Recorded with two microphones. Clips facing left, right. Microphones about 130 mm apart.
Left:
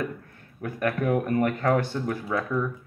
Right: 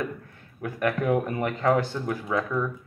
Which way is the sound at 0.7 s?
20° right (ahead or behind).